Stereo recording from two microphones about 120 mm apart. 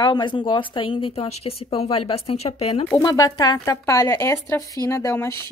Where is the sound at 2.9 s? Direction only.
30° left (ahead or behind).